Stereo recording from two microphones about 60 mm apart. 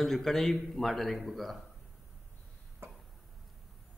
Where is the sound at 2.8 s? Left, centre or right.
Right.